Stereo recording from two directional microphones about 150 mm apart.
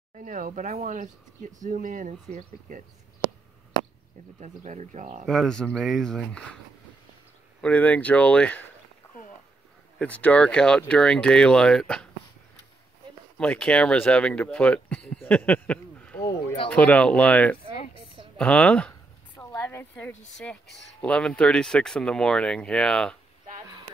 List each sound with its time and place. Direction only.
0.1 s speech: 60° right (ahead or behind)
4.4 s speech: 55° right (ahead or behind)
5.2 s speech: centre (ahead or behind)
7.6 s speech: 10° left (ahead or behind)
9.9 s speech: 10° left (ahead or behind)
13.4 s speech: 5° left (ahead or behind)
15.2 s a sound: 10° left (ahead or behind)
16.2 s a sound: 25° left (ahead or behind)
16.7 s speech: 10° left (ahead or behind)